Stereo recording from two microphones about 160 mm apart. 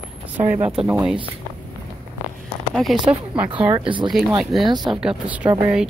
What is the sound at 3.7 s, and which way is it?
Speech, 30° right (ahead or behind).